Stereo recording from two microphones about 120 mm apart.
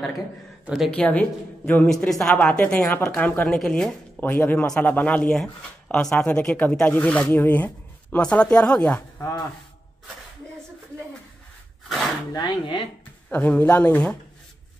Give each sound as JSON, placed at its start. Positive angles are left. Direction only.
{"t": 0.7, "sound": "speech", "side_deg": -5}
{"t": 0.9, "sound": "speech", "side_deg": 10}
{"t": 12.3, "sound": "speech", "side_deg": 35}
{"t": 13.3, "sound": "speech", "side_deg": 15}